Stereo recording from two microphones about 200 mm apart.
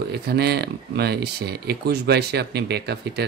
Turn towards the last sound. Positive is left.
turn(degrees=-55)  # may be behind; listen again after turning